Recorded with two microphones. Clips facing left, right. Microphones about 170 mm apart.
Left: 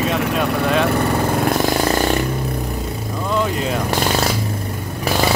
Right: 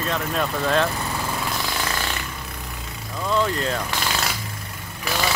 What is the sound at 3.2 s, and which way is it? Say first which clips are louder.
Vehicle: left 2 dB; 10° left (ahead or behind).